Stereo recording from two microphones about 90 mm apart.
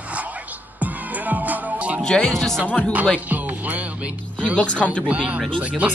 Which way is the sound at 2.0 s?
10° left (ahead or behind).